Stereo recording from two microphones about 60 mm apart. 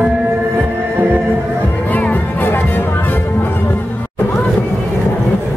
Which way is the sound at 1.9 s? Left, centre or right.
Left.